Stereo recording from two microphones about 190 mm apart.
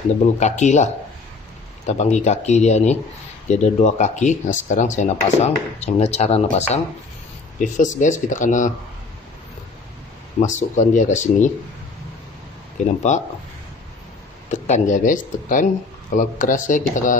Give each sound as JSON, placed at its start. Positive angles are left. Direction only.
{"t": 0.4, "sound": "speech", "side_deg": 40}
{"t": 1.9, "sound": "speech", "side_deg": 35}
{"t": 10.4, "sound": "speech", "side_deg": 40}
{"t": 12.8, "sound": "speech", "side_deg": 40}
{"t": 14.5, "sound": "speech", "side_deg": 40}